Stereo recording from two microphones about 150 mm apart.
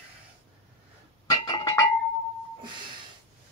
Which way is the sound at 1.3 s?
25° left (ahead or behind).